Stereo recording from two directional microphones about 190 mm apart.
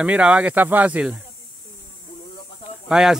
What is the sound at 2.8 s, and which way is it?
Speech, 5° right (ahead or behind).